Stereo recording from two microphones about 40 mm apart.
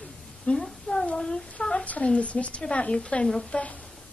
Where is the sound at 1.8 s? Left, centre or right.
Left.